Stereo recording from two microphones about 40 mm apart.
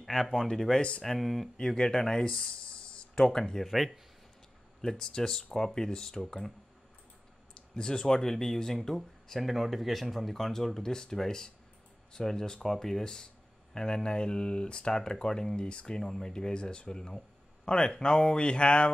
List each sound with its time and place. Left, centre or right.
0.0 s speech: centre
0.7 s speech: left
1.0 s speech: centre
1.6 s speech: centre
3.3 s speech: centre
4.8 s speech: centre
7.7 s speech: centre